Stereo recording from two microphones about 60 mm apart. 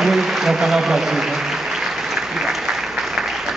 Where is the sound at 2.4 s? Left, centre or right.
Centre.